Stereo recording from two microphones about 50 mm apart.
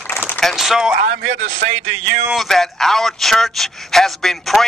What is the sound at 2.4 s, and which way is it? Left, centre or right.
A man's voice, centre.